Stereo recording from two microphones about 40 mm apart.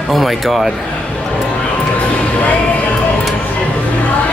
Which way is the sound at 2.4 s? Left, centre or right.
Left.